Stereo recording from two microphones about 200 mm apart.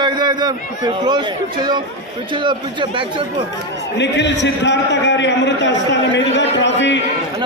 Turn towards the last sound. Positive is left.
turn(degrees=65)  # may be behind; listen again after turning